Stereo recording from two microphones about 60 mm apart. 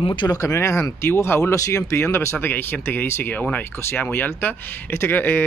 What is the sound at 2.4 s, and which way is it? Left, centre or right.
Speech, left.